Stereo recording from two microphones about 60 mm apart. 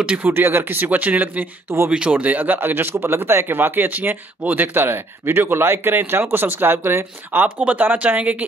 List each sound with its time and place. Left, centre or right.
0.0 s speech: right
0.3 s speech: right